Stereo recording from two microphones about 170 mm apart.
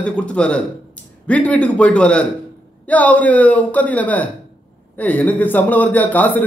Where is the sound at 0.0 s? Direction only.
5° left (ahead or behind).